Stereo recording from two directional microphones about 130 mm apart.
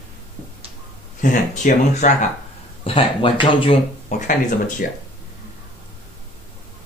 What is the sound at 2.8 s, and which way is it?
Speech, 45° left (ahead or behind).